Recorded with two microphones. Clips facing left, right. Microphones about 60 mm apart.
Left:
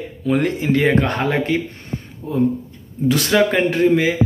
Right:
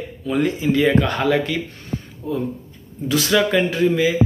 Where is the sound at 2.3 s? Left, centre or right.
Left.